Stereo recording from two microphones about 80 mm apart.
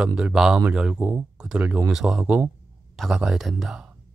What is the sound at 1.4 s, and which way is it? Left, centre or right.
Speech, centre.